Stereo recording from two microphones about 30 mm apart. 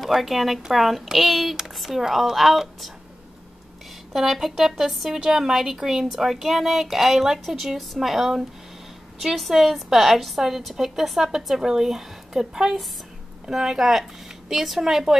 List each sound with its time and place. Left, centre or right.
0.0 s speech: centre
4.1 s speech: centre